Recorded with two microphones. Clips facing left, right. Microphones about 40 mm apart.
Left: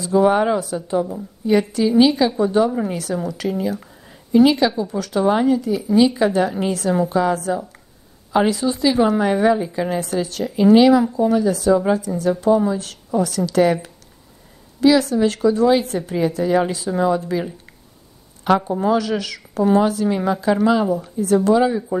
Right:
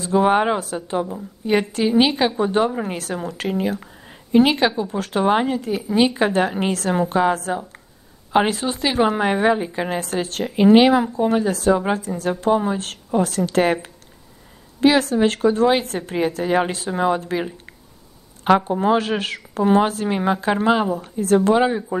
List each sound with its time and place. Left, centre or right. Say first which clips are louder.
0.0 s a woman's voice: left 1 dB; right